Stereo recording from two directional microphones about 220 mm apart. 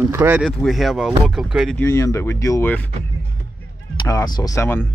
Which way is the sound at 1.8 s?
10° left (ahead or behind).